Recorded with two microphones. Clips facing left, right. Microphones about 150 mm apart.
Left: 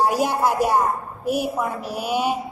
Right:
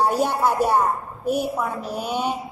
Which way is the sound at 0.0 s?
10° left (ahead or behind).